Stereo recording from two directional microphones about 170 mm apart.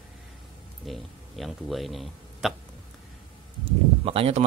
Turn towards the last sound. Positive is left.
turn(degrees=-35)  # may be behind; listen again after turning